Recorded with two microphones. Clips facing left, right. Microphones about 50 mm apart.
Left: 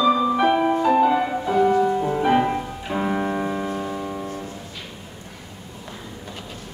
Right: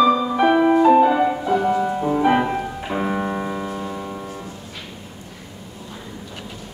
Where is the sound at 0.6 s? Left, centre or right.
Centre.